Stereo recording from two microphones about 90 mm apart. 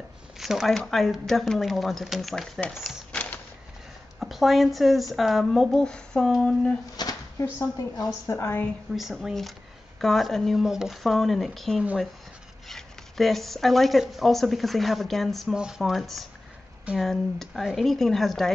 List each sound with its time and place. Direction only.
0.4 s speech: 5° right (ahead or behind)
4.2 s speech: centre (ahead or behind)
7.0 s a sound: 45° left (ahead or behind)
8.3 s a woman's voice: 30° left (ahead or behind)
8.9 s speech: 5° right (ahead or behind)